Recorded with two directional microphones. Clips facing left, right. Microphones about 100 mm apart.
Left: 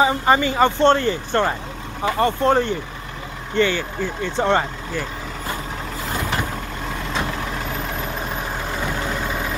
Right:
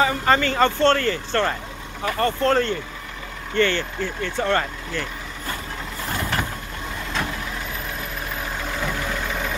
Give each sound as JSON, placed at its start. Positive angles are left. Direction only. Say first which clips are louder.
{"t": 0.0, "sound": "speech", "louder": "left 2 dB", "side_deg": 20}